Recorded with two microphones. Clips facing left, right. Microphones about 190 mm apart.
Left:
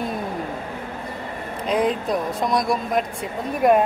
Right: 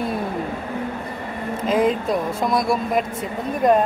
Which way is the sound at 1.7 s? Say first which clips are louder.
Right 2 dB; centre (ahead or behind).